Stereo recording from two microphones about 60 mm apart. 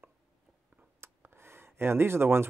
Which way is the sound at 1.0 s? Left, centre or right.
Right.